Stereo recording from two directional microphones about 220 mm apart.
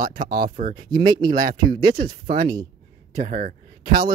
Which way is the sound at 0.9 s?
20° right (ahead or behind).